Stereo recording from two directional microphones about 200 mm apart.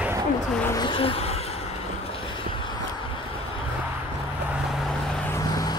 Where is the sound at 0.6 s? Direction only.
20° left (ahead or behind).